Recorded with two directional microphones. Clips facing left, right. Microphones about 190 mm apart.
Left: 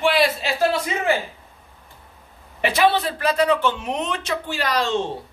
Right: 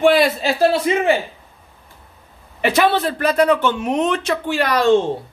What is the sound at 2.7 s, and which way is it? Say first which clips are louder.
Speech: right 2 dB; 50° right (ahead or behind).